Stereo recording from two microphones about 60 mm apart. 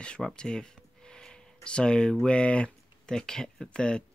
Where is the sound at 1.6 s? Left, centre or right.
Centre.